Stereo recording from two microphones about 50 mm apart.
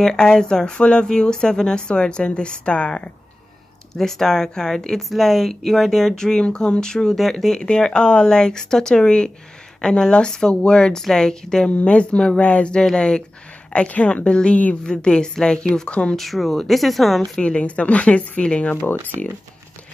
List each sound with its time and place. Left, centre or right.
0.0 s speech: centre
3.9 s a woman's voice: centre
16.2 s speech: centre
17.2 s a woman's voice: left
18.8 s speech: left